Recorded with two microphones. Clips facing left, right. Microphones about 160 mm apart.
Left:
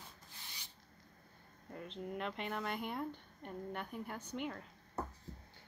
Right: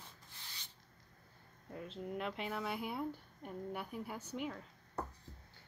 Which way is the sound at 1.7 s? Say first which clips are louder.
Right 1 dB; centre (ahead or behind).